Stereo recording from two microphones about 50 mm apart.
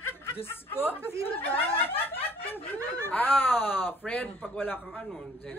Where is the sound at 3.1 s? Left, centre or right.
Left.